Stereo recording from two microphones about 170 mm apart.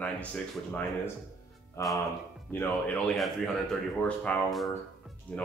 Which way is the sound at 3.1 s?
Centre (ahead or behind).